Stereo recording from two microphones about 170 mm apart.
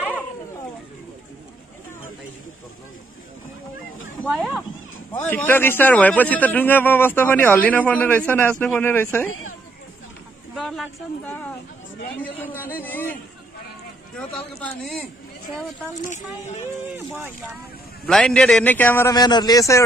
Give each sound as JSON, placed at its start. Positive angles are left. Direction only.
{"t": 4.2, "sound": "speech", "side_deg": 0}
{"t": 5.1, "sound": "a man's voice", "side_deg": 10}
{"t": 10.5, "sound": "a man's voice", "side_deg": 0}
{"t": 17.1, "sound": "speech", "side_deg": -10}
{"t": 18.0, "sound": "a man's voice", "side_deg": 5}
{"t": 19.1, "sound": "a man's voice", "side_deg": 25}